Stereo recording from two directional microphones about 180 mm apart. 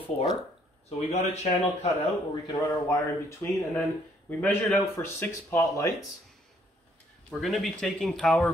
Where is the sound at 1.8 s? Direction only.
25° left (ahead or behind).